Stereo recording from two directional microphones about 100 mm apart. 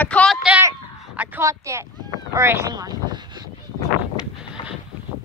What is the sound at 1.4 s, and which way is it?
Speech, 30° right (ahead or behind).